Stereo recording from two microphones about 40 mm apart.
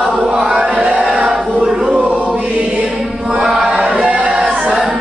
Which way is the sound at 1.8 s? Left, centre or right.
Right.